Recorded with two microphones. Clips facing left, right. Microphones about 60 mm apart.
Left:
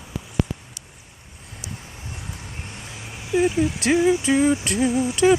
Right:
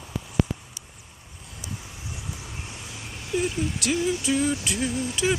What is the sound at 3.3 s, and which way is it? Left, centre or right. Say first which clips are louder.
Speech: left 7 dB; left.